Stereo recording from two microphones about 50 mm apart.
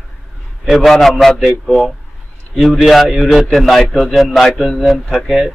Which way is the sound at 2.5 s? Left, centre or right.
Centre.